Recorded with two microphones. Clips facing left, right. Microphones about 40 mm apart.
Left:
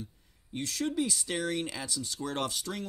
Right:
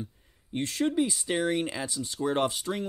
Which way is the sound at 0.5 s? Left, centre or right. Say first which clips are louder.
Right 5 dB; right.